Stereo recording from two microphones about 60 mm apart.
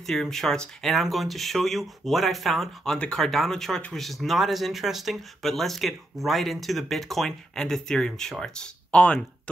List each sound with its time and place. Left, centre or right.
0.0 s speech: centre